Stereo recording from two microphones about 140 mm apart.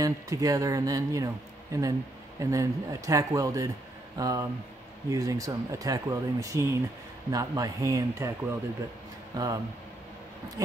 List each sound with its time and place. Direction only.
0.0 s speech: 25° right (ahead or behind)
9.3 s speech: 25° right (ahead or behind)